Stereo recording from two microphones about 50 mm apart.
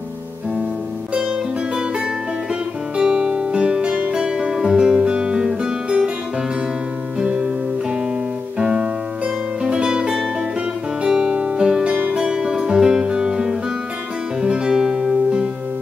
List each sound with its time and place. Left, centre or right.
1.1 s music: centre
7.2 s music: centre
11.9 s music: right
12.2 s music: centre